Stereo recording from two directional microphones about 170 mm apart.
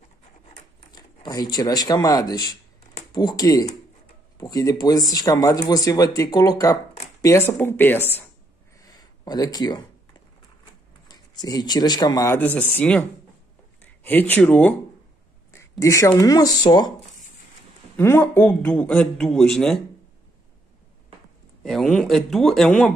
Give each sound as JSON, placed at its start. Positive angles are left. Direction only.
{"t": 0.9, "sound": "a man's voice", "side_deg": 25}
{"t": 8.8, "sound": "a sound", "side_deg": 25}
{"t": 11.1, "sound": "speech", "side_deg": 25}
{"t": 12.4, "sound": "a man's voice", "side_deg": 10}
{"t": 14.0, "sound": "a man's voice", "side_deg": 10}
{"t": 15.8, "sound": "speech", "side_deg": 20}
{"t": 17.9, "sound": "a man's voice", "side_deg": 15}
{"t": 21.6, "sound": "speech", "side_deg": 0}